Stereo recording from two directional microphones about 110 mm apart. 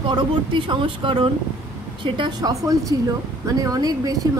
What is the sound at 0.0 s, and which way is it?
A woman's voice, 45° right (ahead or behind).